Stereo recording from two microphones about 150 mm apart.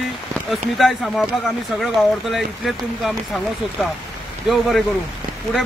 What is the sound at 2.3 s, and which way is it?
Speech, centre (ahead or behind).